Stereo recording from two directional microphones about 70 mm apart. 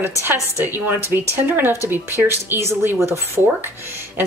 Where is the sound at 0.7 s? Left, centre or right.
Right.